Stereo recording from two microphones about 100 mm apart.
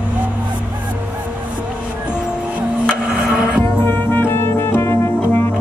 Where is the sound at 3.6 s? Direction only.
20° left (ahead or behind).